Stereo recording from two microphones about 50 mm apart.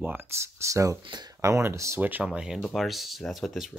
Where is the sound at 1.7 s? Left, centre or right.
Right.